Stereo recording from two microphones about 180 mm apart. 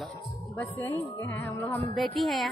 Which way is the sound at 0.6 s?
15° left (ahead or behind).